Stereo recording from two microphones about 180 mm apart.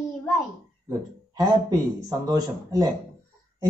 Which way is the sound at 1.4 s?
20° right (ahead or behind).